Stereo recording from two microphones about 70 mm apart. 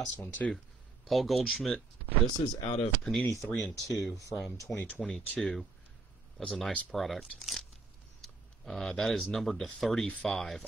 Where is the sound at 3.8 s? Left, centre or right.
Left.